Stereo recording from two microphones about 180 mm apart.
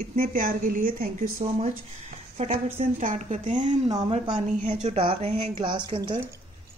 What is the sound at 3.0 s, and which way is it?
Speech, 45° right (ahead or behind).